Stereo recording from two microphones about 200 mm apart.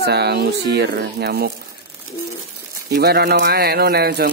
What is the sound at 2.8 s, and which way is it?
A man's voice, 55° right (ahead or behind).